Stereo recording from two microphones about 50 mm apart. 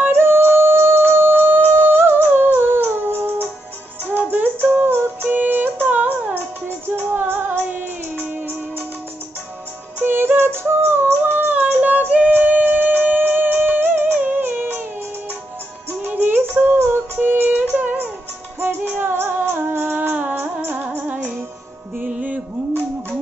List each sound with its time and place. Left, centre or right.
0.2 s music: right
10.0 s music: right
11.3 s female singing: right
12.3 s music: right
16.0 s music: right
21.9 s music: right